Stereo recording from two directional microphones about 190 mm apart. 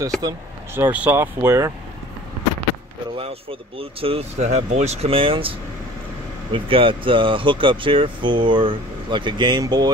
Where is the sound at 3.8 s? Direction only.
30° right (ahead or behind).